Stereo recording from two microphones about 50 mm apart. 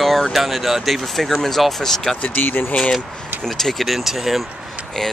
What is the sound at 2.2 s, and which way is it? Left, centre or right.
Speech, left.